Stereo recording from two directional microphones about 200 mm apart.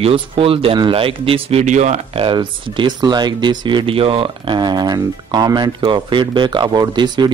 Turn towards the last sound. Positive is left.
turn(degrees=-20)  # may be behind; listen again after turning